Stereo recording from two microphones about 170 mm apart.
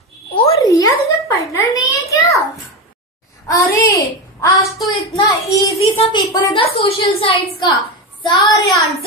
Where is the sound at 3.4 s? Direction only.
20° left (ahead or behind).